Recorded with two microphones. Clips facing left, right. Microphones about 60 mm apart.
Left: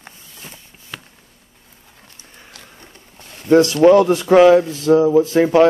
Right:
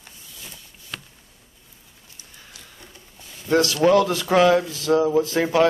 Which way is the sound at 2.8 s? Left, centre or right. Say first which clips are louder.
Left 3 dB; left.